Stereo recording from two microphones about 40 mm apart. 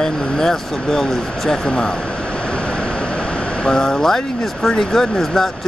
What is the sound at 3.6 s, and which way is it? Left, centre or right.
Speech, centre.